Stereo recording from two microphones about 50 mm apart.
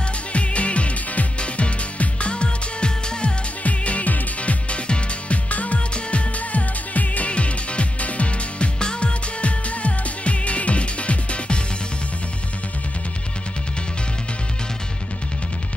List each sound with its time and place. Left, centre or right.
0.3 s music: left